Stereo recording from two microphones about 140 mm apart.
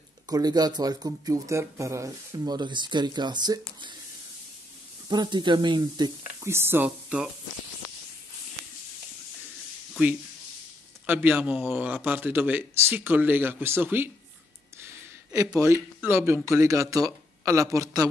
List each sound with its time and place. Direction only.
0.3 s speech: 30° right (ahead or behind)
5.1 s speech: 30° right (ahead or behind)
6.4 s a man's voice: 15° right (ahead or behind)
11.1 s a man's voice: 10° right (ahead or behind)
15.5 s a man's voice: 20° right (ahead or behind)